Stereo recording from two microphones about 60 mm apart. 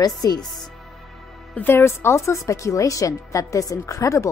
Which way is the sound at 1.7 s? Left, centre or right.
Left.